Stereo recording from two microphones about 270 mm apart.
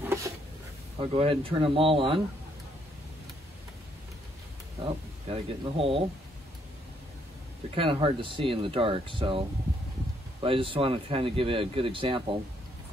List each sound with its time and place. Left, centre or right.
0.0 s a sound: centre
0.9 s speech: right
4.8 s speech: centre
7.7 s speech: centre
10.4 s speech: centre